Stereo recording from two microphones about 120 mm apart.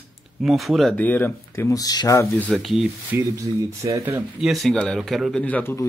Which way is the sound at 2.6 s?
Centre (ahead or behind).